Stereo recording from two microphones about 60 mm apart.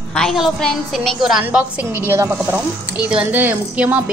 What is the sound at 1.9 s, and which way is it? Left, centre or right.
A woman's voice, right.